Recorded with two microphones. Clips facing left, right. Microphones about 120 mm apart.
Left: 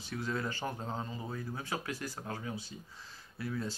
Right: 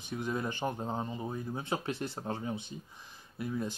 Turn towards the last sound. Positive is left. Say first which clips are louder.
# right 2 dB
turn(degrees=-20)  # may be behind; listen again after turning